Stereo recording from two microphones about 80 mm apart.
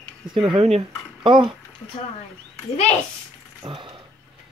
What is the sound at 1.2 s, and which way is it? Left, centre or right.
Speech, right.